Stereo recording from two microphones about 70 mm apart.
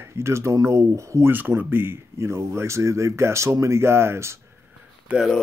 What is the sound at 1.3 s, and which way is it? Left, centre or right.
Speech, right.